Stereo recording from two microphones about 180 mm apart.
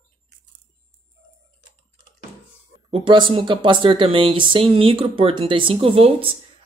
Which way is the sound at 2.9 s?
25° right (ahead or behind).